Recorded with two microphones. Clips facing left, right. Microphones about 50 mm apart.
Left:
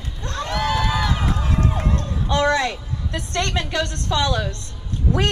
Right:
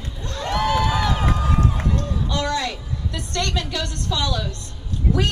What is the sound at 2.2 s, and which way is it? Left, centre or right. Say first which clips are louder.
A woman's voice: left 7 dB; left.